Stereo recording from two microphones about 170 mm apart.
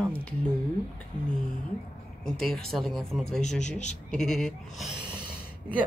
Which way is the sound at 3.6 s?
45° left (ahead or behind).